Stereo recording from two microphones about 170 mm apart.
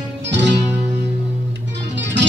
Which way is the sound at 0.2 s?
90° right.